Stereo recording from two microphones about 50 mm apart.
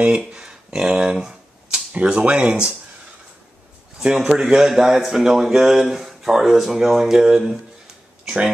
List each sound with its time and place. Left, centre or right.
0.3 s a sound: centre
1.9 s speech: right
4.1 s a man's voice: centre